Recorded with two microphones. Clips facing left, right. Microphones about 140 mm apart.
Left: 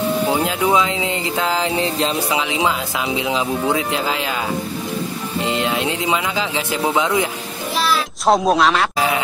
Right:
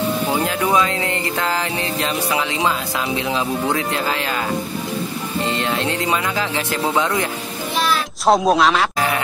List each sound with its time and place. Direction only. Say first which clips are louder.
0.4 s speech: left 1 dB; 15° left (ahead or behind)
2.5 s speech: left 1 dB; 15° left (ahead or behind)
5.4 s speech: left 1 dB; 15° left (ahead or behind)
7.8 s music: even; centre (ahead or behind)